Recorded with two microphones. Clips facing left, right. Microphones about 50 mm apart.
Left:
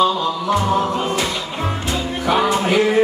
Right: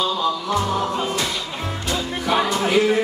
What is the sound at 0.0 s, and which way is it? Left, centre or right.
Music, left.